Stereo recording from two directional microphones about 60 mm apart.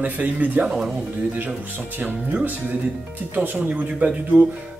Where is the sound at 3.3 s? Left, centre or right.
Right.